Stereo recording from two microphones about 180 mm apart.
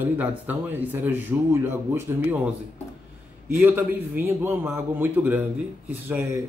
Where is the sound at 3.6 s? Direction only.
10° right (ahead or behind).